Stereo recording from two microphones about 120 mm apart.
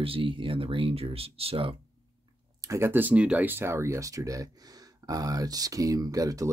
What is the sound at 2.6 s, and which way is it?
Speech, 25° right (ahead or behind).